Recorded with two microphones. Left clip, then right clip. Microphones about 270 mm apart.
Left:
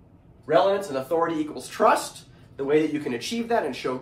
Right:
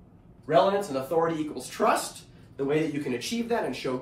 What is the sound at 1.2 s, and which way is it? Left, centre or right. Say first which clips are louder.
Speech: left 2 dB; centre.